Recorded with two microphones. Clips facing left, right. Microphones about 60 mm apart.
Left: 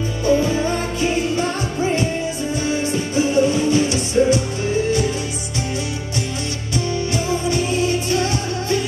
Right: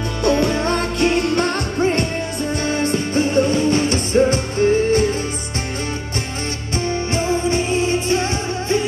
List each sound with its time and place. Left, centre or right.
0.2 s music: right
6.8 s music: right